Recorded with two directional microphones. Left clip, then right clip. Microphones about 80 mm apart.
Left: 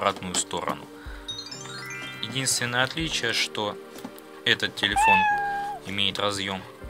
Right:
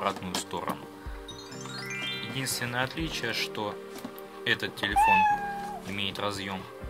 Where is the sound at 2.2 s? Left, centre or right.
Left.